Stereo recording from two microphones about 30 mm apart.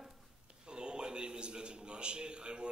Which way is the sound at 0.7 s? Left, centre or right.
Right.